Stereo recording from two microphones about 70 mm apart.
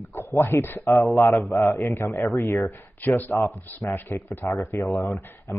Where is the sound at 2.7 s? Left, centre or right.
Left.